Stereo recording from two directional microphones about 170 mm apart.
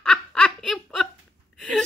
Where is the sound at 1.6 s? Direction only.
5° left (ahead or behind).